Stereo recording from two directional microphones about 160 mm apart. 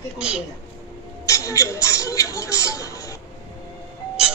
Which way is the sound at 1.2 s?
20° left (ahead or behind).